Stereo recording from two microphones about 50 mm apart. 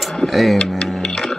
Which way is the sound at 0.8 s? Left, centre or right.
Centre.